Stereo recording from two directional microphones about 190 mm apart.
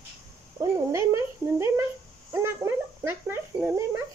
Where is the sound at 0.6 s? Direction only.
15° right (ahead or behind).